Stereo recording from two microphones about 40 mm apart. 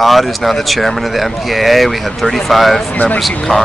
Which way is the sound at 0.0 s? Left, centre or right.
Centre.